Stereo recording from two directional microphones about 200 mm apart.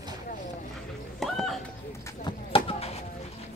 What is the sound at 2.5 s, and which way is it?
Chop, 25° left (ahead or behind).